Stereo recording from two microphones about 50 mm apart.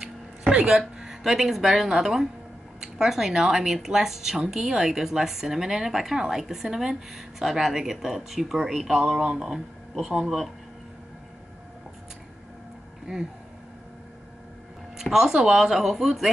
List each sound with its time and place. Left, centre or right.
0.0 s a sound: centre
2.8 s speech: centre
15.0 s speech: centre